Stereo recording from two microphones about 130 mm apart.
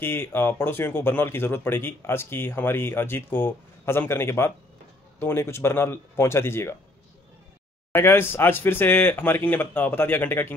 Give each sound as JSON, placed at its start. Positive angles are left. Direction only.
{"t": 0.0, "sound": "speech", "side_deg": 15}
{"t": 7.9, "sound": "speech", "side_deg": 20}